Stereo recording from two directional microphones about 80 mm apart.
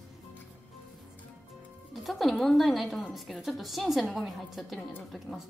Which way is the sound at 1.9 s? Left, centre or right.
Centre.